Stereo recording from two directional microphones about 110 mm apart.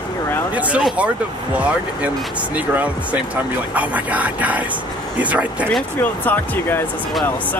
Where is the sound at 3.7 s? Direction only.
15° right (ahead or behind).